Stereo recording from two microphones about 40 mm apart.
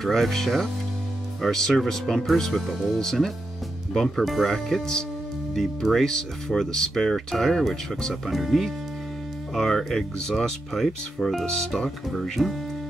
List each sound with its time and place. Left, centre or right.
0.0 s speech: centre
8.1 s speech: centre